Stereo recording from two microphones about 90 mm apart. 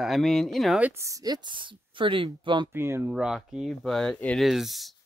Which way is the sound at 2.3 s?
55° right (ahead or behind).